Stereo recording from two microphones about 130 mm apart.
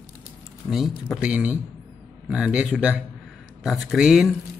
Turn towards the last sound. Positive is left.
turn(degrees=-5)  # may be behind; listen again after turning